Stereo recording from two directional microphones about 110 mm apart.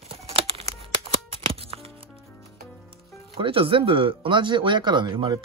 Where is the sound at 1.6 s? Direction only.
65° right (ahead or behind).